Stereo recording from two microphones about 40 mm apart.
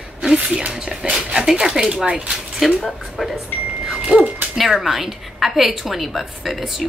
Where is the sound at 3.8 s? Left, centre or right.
Right.